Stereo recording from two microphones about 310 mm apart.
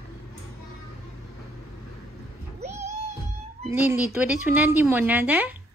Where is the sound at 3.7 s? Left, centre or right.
Centre.